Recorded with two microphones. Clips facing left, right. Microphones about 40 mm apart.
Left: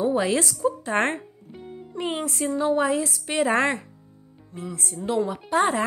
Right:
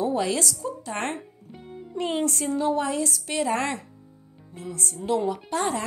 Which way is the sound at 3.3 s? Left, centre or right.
Left.